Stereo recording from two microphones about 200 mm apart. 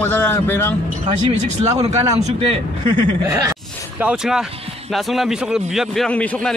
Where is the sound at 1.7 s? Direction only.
30° right (ahead or behind).